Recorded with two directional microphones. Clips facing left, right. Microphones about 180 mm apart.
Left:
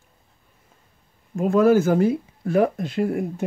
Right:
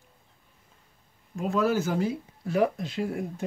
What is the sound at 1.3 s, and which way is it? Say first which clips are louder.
Speech: left 9 dB; 50° left (ahead or behind).